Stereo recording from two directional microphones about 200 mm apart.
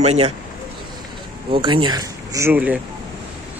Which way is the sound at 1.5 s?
25° right (ahead or behind).